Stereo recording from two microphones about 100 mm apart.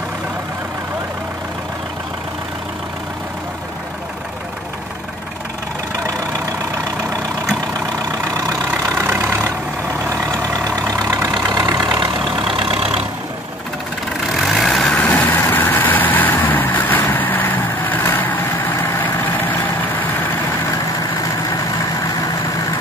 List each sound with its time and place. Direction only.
8.5 s vehicle: 30° right (ahead or behind); by 12.8 s 65° right (ahead or behind)
14.3 s vehicle: centre (ahead or behind); by 19.4 s 20° left (ahead or behind)